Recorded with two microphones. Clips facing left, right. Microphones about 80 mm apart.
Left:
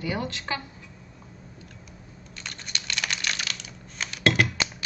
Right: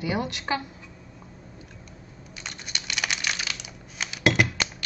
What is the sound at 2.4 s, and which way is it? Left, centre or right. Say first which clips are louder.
Computer keyboard: even; centre.